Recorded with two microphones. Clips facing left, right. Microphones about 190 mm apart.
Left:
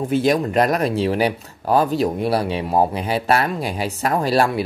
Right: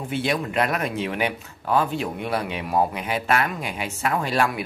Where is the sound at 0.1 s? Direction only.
40° left (ahead or behind).